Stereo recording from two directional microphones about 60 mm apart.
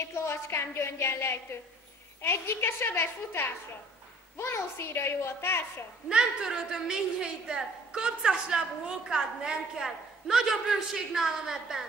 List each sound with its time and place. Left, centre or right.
0.1 s a woman's voice: left
6.0 s a woman's voice: centre